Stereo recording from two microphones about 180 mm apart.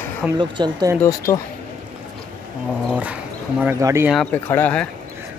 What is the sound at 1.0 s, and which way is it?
Speech, 20° left (ahead or behind).